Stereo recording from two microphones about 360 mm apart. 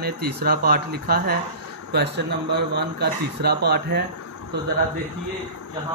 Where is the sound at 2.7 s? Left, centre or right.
Right.